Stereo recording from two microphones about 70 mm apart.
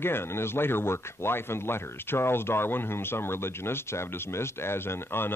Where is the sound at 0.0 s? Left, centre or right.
Left.